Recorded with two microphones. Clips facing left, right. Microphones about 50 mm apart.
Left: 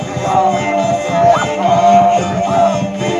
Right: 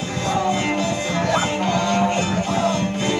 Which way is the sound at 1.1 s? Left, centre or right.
Left.